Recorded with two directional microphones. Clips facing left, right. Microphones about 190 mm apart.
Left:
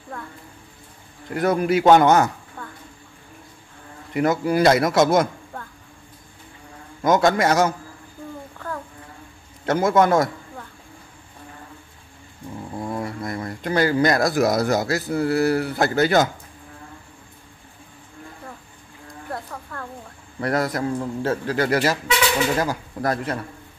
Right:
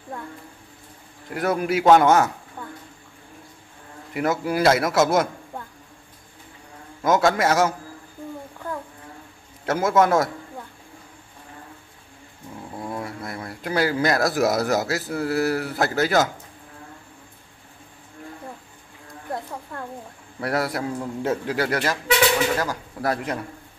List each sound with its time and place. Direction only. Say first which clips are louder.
1.3 s a man's voice: left 3 dB; 5° right (ahead or behind)
4.1 s a man's voice: left 3 dB; 5° right (ahead or behind)
7.0 s speech: left 2 dB; 5° right (ahead or behind)
9.7 s speech: left 2 dB; 5° right (ahead or behind)
12.7 s speech: left 3 dB; centre (ahead or behind)
19.3 s a sound: right 2 dB; 20° right (ahead or behind)
20.3 s a man's voice: left 2 dB; 5° right (ahead or behind)
21.6 s speech: left 6 dB; 5° left (ahead or behind)
22.9 s a man's voice: even; 10° right (ahead or behind)